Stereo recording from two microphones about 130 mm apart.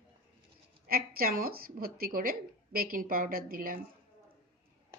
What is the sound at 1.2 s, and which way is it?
A woman's voice, 90° right.